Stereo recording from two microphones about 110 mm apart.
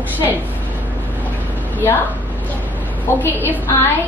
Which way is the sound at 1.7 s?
20° left (ahead or behind).